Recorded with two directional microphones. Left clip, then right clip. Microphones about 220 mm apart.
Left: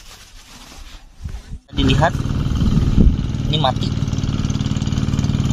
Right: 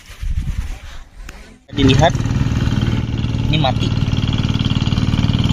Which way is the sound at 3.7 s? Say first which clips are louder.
Right 3 dB; 55° left (ahead or behind).